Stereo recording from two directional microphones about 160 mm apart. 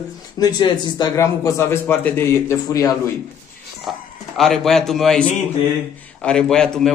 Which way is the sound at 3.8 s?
Centre (ahead or behind).